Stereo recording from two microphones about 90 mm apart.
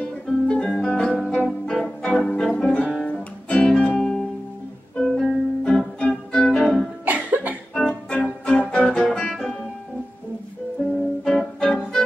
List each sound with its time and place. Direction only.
0.5 s music: 10° left (ahead or behind)
3.1 s guitar: 10° left (ahead or behind)
4.9 s music: 5° left (ahead or behind)
7.1 s cough: 15° right (ahead or behind)
7.7 s music: 10° left (ahead or behind)
11.2 s music: 10° left (ahead or behind)